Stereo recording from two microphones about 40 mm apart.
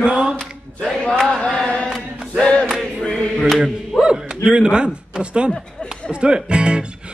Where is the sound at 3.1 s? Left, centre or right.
Centre.